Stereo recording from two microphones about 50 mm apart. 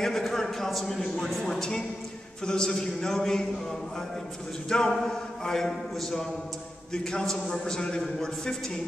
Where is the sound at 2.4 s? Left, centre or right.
Centre.